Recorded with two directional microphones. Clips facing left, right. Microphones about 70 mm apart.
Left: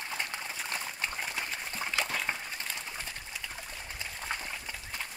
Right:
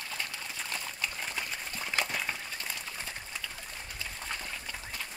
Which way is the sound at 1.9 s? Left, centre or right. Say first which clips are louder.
Right 1 dB; centre.